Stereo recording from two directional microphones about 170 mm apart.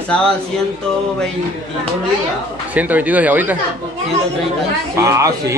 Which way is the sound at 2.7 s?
10° right (ahead or behind).